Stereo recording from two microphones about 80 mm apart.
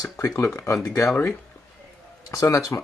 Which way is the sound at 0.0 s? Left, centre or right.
Left.